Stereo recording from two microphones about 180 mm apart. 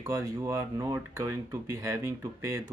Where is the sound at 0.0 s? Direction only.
15° right (ahead or behind).